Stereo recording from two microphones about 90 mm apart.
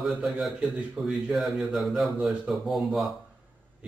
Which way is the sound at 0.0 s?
Centre (ahead or behind).